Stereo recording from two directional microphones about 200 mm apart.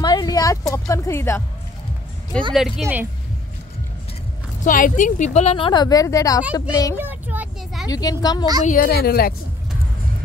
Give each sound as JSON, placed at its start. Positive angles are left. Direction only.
{"t": 0.0, "sound": "a sound", "side_deg": 20}
{"t": 2.3, "sound": "speech", "side_deg": 5}
{"t": 2.8, "sound": "speech", "side_deg": -10}
{"t": 4.6, "sound": "a woman's voice", "side_deg": 40}
{"t": 7.0, "sound": "vehicle", "side_deg": -10}
{"t": 7.9, "sound": "a woman's voice", "side_deg": 20}
{"t": 8.6, "sound": "a woman's voice", "side_deg": 45}